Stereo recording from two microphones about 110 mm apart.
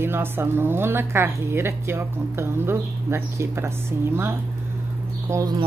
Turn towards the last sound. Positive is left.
turn(degrees=-30)  # may be behind; listen again after turning